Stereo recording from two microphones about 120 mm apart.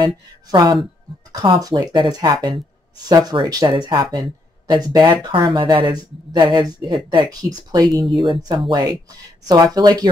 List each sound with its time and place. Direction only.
0.0 s speech: 35° right (ahead or behind)